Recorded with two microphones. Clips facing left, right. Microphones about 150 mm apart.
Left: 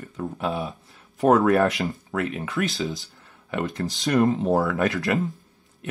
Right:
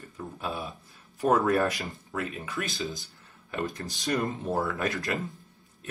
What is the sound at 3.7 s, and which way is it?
Speech, 90° left.